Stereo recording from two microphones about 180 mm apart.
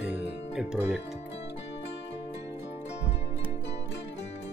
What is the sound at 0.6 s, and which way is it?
Speech, 5° right (ahead or behind).